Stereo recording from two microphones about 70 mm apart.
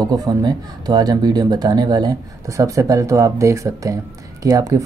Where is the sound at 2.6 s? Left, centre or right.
Right.